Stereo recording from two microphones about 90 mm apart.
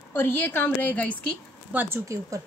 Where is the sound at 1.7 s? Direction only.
20° right (ahead or behind).